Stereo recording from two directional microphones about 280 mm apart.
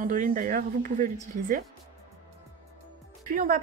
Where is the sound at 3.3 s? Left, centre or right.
Right.